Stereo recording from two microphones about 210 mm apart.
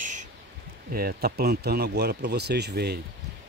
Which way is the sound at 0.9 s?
45° right (ahead or behind).